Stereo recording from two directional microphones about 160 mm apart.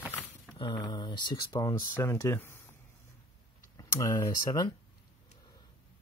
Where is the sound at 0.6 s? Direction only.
30° left (ahead or behind).